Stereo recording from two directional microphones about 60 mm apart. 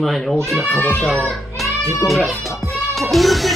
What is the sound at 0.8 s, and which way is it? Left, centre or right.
Speech, left.